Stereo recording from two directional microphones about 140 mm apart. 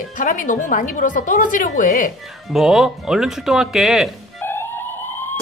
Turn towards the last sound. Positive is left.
turn(degrees=15)  # may be behind; listen again after turning